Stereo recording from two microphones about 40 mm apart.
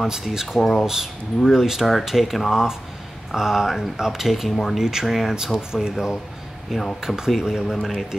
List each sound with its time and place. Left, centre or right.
0.0 s speech: centre
0.6 s speech: centre
0.8 s speech: centre
4.5 s speech: centre
4.7 s speech: centre
5.0 s speech: centre
5.7 s speech: centre
6.7 s speech: centre
7.0 s speech: centre
7.7 s speech: centre